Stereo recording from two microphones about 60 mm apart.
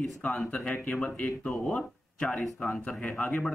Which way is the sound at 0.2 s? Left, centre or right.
Left.